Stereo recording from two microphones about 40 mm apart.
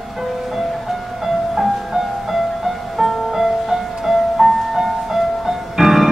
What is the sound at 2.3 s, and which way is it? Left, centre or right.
Music, centre.